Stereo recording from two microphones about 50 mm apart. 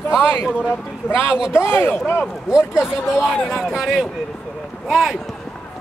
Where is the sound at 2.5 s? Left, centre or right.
Centre.